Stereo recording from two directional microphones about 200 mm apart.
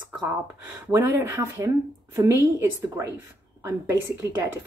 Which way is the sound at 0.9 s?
10° right (ahead or behind).